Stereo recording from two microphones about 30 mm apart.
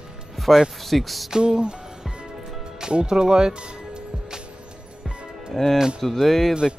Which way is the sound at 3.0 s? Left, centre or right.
Right.